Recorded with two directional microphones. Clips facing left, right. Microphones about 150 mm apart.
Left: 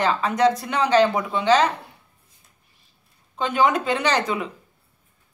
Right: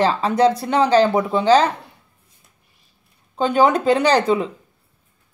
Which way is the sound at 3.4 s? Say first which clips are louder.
Right 4 dB; 35° right (ahead or behind).